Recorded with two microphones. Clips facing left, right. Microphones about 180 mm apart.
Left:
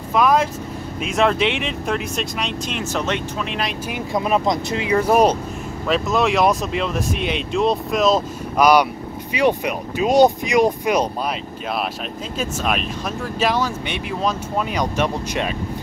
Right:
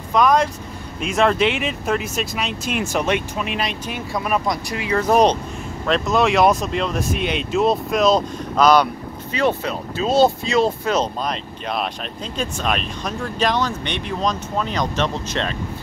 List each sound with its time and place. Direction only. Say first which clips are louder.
0.1 s speech: even; 5° left (ahead or behind)
3.9 s speech: left 4 dB; 20° left (ahead or behind); by 8.2 s centre (ahead or behind)
8.5 s speech: even; 10° left (ahead or behind)